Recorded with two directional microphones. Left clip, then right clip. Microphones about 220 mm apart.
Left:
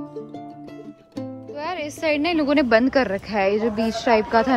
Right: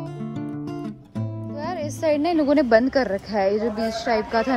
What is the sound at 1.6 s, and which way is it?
Speech, 10° right (ahead or behind).